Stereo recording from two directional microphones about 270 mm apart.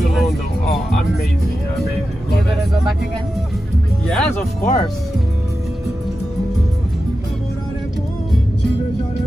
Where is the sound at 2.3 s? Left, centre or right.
Centre.